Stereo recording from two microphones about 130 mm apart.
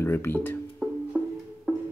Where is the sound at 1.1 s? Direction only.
5° right (ahead or behind).